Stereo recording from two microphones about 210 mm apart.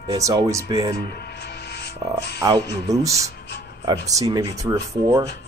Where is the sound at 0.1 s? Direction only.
15° right (ahead or behind).